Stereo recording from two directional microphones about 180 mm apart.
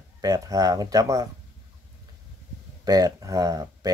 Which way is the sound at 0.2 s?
20° right (ahead or behind).